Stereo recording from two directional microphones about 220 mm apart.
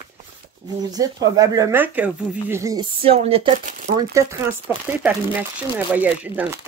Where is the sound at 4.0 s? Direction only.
15° right (ahead or behind).